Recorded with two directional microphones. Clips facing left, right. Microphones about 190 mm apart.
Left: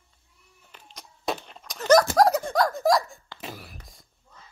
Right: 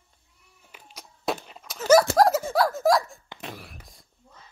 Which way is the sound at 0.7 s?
10° right (ahead or behind).